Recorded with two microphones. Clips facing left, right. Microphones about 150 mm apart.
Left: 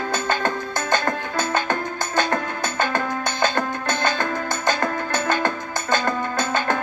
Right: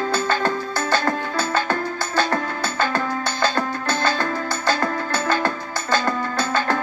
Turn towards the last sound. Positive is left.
turn(degrees=20)  # may be behind; listen again after turning